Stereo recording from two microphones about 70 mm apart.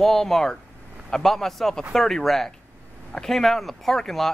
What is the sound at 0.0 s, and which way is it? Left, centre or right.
A man's voice, centre.